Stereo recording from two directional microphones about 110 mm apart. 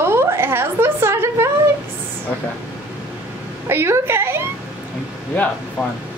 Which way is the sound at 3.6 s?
20° right (ahead or behind).